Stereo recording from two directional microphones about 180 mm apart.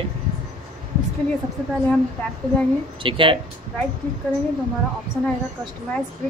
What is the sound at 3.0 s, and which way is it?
Speech, 30° right (ahead or behind).